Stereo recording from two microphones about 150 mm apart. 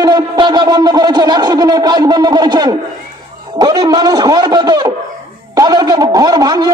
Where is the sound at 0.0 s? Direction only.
25° right (ahead or behind).